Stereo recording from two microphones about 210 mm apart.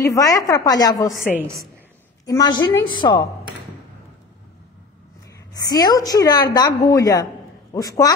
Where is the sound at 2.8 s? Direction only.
20° left (ahead or behind).